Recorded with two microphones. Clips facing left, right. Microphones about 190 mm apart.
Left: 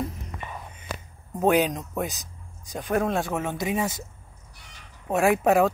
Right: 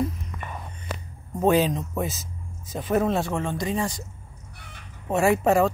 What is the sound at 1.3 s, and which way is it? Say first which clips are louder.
Speech: right 1 dB; centre (ahead or behind).